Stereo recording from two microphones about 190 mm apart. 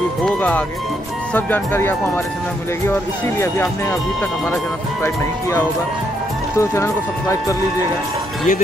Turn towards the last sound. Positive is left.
turn(degrees=15)  # may be behind; listen again after turning